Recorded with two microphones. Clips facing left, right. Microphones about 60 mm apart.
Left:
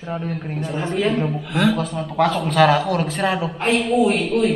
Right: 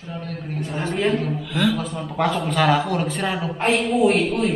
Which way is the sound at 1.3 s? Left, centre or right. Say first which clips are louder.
Left 2 dB; centre.